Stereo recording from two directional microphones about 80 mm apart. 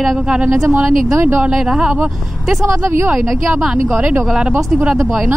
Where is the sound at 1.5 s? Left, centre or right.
Centre.